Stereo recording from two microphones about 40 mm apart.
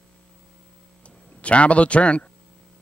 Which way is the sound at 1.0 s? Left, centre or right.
Left.